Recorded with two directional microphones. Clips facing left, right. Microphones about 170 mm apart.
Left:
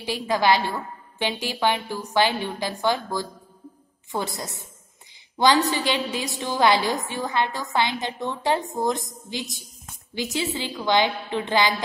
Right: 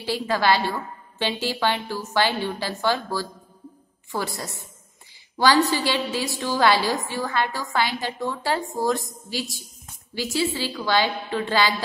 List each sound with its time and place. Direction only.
0.0 s a woman's voice: 15° left (ahead or behind)